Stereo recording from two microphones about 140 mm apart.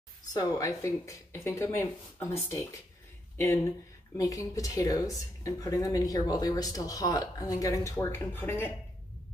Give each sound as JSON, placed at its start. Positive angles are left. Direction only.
{"t": 0.3, "sound": "a woman's voice", "side_deg": 25}